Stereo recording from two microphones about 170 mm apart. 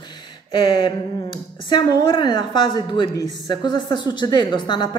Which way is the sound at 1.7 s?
25° left (ahead or behind).